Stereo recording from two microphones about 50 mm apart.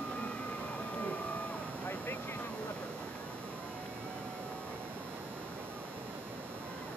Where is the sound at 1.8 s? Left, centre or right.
Left.